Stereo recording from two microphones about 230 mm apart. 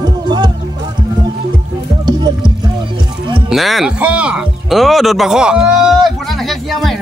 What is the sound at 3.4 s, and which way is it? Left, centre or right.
Speech, centre.